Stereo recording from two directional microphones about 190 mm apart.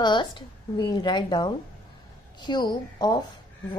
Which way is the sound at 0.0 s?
25° left (ahead or behind).